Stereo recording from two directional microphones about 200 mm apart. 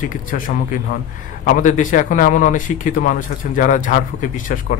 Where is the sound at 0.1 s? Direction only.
40° left (ahead or behind).